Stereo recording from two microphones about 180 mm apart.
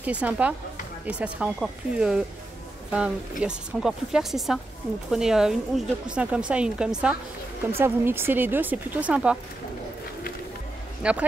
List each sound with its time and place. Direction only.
0.0 s a woman's voice: 10° right (ahead or behind)
11.0 s speech: 5° right (ahead or behind)